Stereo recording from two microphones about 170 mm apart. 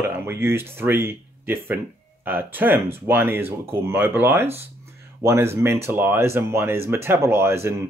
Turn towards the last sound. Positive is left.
turn(degrees=-15)  # may be behind; listen again after turning